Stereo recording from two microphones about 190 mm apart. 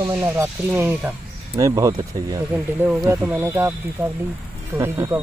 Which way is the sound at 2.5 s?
5° right (ahead or behind).